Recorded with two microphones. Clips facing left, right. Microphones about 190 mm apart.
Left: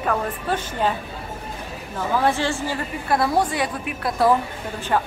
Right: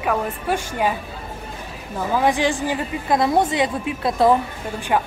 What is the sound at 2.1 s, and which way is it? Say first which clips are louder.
A woman's voice: right 2 dB; 15° right (ahead or behind).